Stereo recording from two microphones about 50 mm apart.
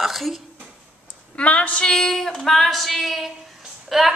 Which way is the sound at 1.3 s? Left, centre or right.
Left.